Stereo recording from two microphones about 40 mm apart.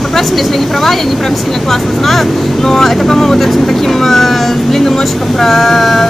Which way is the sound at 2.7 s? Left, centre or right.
Centre.